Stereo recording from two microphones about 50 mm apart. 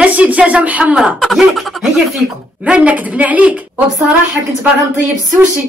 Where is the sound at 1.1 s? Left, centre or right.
Centre.